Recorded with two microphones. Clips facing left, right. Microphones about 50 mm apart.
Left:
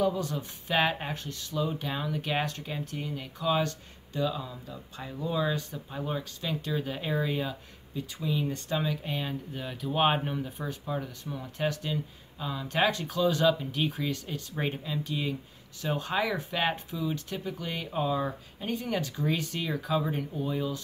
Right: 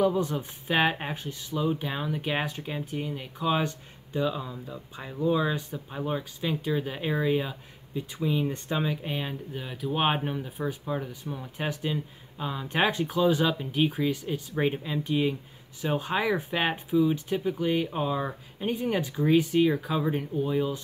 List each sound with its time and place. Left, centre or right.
0.0 s speech: right